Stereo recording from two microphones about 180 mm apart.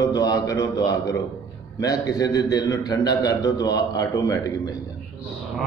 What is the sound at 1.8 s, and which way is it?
A man's voice, 20° left (ahead or behind).